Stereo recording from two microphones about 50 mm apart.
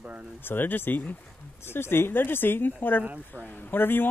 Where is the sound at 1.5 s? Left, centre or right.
Left.